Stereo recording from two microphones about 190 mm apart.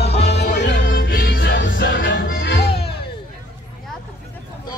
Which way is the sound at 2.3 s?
60° left (ahead or behind).